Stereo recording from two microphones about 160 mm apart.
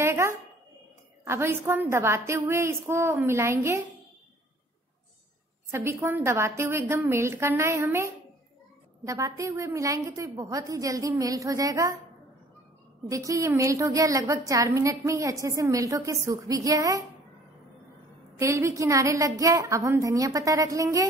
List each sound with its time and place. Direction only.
0.0 s a sound: 15° right (ahead or behind)
1.2 s a woman's voice: 15° right (ahead or behind)
5.7 s a woman's voice: 15° right (ahead or behind)
13.1 s a woman's voice: 20° right (ahead or behind)
18.4 s a woman's voice: 20° right (ahead or behind)